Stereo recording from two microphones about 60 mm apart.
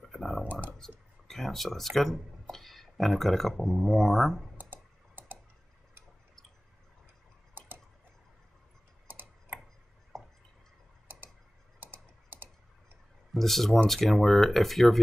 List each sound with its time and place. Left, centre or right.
0.0 s a sound: centre
0.4 s a sound: right
0.7 s speech: centre
4.6 s typing: right
7.5 s tick-tock: right
9.0 s tick-tock: right
11.8 s typing: right
13.3 s speech: centre